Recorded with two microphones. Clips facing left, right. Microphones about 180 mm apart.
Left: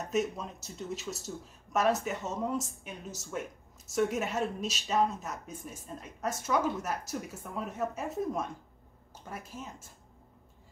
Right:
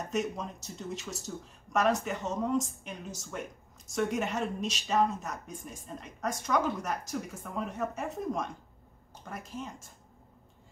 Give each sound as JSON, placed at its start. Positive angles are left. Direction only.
{"t": 0.1, "sound": "a woman's voice", "side_deg": 5}
{"t": 3.9, "sound": "a woman's voice", "side_deg": 5}